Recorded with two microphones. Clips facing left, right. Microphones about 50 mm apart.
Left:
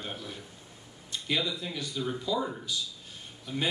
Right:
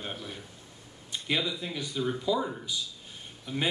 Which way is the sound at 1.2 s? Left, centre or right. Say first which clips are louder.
Right 1 dB; centre.